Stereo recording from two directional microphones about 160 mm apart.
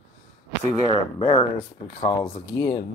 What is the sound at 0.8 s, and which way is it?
Speech, 30° left (ahead or behind).